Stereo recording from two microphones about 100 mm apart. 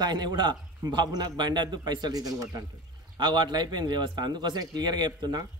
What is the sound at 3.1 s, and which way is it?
Speech, 50° right (ahead or behind).